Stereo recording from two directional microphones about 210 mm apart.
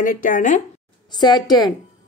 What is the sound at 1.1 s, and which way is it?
Speech, 20° left (ahead or behind).